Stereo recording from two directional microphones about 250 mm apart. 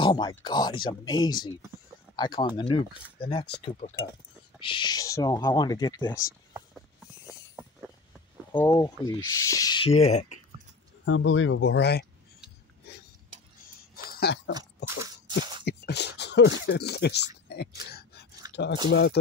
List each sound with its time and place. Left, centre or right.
0.0 s speech: centre
4.6 s speech: centre
8.5 s speech: centre
11.1 s speech: left
12.9 s a sound: left
14.9 s a sound: centre
15.6 s speech: left
17.5 s a sound: left
18.5 s speech: left